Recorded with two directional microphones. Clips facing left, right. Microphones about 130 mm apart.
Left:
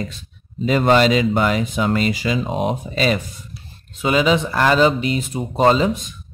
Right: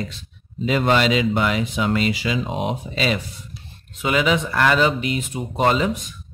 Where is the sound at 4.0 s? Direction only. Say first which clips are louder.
Left 3 dB; 30° left (ahead or behind).